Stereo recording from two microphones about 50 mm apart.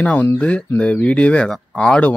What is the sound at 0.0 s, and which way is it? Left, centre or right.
Speech, left.